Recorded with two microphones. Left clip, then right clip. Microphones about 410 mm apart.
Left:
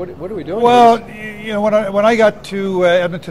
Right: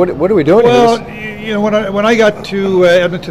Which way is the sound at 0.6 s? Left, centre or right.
Left.